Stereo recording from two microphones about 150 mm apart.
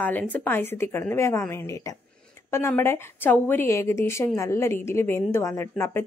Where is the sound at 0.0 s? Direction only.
10° left (ahead or behind).